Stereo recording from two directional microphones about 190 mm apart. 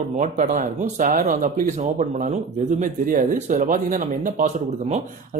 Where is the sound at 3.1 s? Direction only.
45° right (ahead or behind).